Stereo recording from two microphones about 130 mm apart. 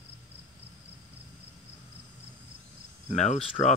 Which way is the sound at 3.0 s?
65° left (ahead or behind).